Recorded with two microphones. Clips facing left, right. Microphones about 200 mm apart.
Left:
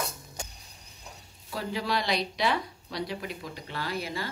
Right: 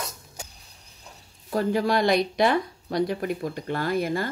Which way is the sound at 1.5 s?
50° right (ahead or behind).